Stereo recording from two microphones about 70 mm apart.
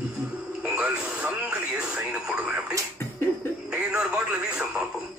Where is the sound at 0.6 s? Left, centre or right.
Centre.